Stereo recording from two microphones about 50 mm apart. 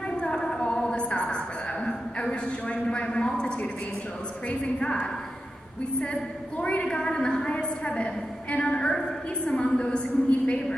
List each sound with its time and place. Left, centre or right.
0.2 s a sound: centre
2.4 s a woman's voice: left
6.6 s a woman's voice: left